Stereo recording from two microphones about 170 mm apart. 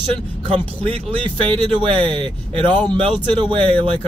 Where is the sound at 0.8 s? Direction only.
30° right (ahead or behind).